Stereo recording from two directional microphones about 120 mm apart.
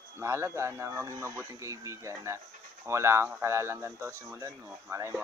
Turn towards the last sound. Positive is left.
turn(degrees=-25)  # may be behind; listen again after turning